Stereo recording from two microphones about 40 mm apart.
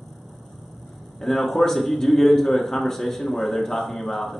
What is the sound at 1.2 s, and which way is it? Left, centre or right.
A man's voice, centre.